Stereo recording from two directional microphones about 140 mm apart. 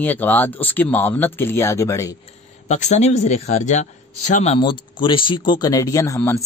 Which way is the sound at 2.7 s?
55° left (ahead or behind).